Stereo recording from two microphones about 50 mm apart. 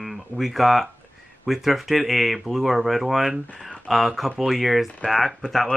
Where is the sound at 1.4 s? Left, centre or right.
Centre.